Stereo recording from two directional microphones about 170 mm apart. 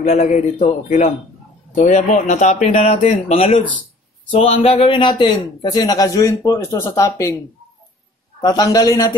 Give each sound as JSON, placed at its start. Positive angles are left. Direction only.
{"t": 0.0, "sound": "a man's voice", "side_deg": 40}
{"t": 8.4, "sound": "a man's voice", "side_deg": 20}